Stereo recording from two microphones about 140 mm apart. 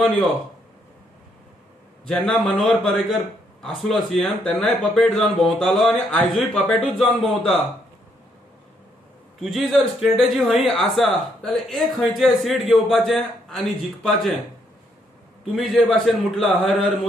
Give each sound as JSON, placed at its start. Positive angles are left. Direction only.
{"t": 2.0, "sound": "speech", "side_deg": 5}
{"t": 9.4, "sound": "speech", "side_deg": 0}
{"t": 15.5, "sound": "speech", "side_deg": 0}